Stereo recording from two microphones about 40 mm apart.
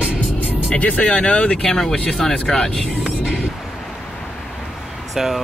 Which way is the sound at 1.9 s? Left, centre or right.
Left.